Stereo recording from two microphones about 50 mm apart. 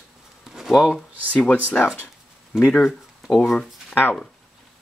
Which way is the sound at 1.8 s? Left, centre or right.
Left.